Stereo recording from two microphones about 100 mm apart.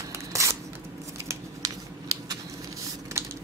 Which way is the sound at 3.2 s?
25° right (ahead or behind).